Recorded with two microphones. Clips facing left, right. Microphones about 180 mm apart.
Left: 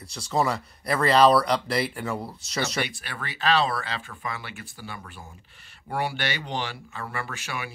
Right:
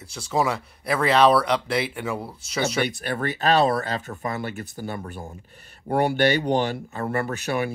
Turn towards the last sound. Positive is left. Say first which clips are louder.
# right 10 dB
turn(degrees=-45)  # may be behind; listen again after turning